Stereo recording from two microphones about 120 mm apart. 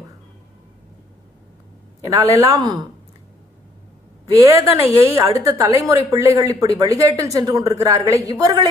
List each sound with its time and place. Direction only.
2.0 s a woman's voice: 25° right (ahead or behind)
4.6 s a woman's voice: 20° right (ahead or behind)